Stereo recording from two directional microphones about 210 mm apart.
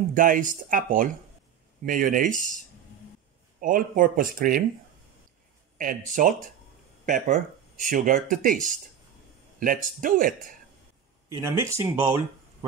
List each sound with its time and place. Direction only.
0.1 s speech: 40° right (ahead or behind)
3.6 s speech: 40° right (ahead or behind)
5.8 s speech: 40° right (ahead or behind)
11.2 s speech: 15° right (ahead or behind)